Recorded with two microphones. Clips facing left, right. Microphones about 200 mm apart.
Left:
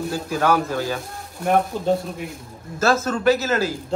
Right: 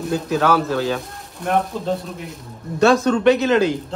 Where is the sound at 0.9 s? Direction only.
5° left (ahead or behind).